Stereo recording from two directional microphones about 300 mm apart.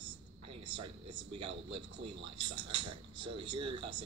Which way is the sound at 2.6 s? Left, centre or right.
Right.